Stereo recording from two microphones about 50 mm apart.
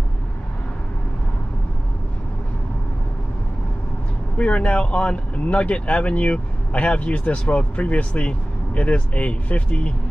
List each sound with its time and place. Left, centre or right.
4.4 s speech: left